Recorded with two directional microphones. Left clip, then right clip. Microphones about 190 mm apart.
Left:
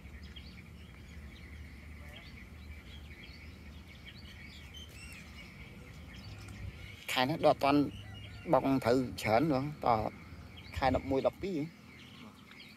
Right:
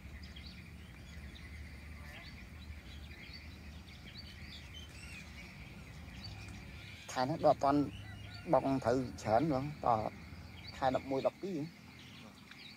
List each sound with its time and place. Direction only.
7.1 s a man's voice: 35° left (ahead or behind)
11.1 s speech: 25° left (ahead or behind)